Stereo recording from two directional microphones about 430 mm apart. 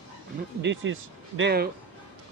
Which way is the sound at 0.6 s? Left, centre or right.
Right.